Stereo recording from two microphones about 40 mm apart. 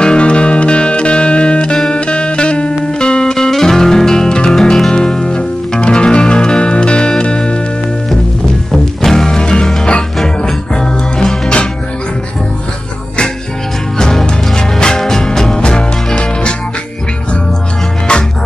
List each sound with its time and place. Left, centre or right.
0.0 s music: left
9.0 s music: centre
13.9 s music: centre